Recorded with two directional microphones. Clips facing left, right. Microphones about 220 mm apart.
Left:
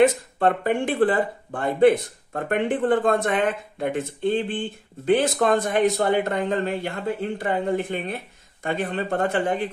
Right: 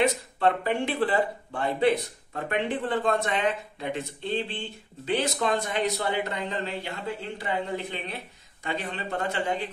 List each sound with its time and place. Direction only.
0.0 s speech: 50° left (ahead or behind)